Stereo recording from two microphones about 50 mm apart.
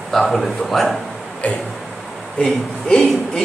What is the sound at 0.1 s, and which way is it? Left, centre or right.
Speech, centre.